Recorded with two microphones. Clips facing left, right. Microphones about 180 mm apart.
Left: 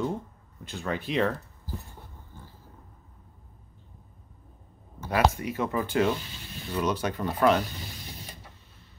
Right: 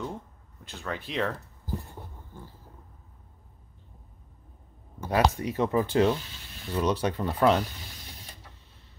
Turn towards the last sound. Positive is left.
turn(degrees=-30)  # may be behind; listen again after turning